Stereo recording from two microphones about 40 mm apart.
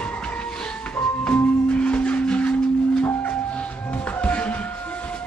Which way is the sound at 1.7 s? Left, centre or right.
Left.